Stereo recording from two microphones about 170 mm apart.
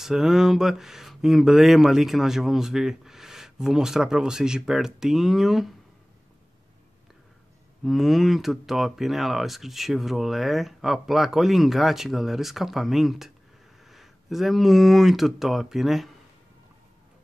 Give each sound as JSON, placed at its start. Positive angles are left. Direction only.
{"t": 0.0, "sound": "speech", "side_deg": -5}
{"t": 7.8, "sound": "speech", "side_deg": 0}